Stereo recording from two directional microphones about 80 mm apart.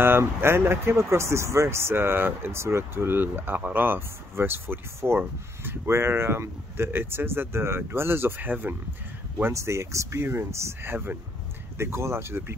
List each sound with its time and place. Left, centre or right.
0.0 s speech: right
9.5 s speech: right